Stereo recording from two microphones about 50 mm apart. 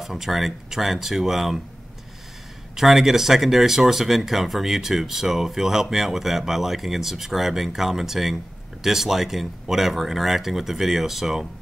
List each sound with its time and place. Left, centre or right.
0.0 s speech: centre
2.7 s speech: centre